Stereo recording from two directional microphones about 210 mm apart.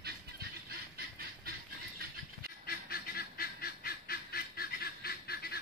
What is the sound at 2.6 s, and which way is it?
Goose, 45° left (ahead or behind).